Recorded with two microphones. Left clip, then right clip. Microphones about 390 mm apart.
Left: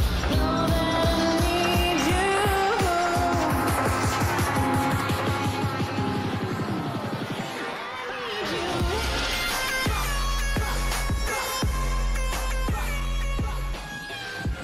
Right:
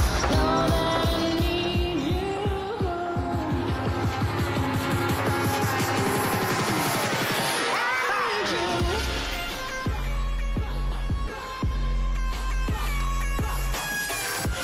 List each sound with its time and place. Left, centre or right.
0.3 s music: centre